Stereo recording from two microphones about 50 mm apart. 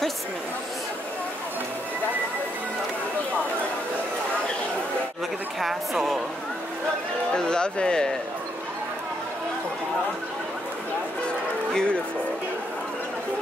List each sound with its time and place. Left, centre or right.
5.6 s a woman's voice: centre
7.3 s speech: centre
11.7 s speech: centre